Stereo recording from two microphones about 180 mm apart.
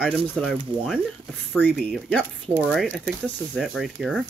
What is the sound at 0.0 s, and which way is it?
Speech, centre (ahead or behind).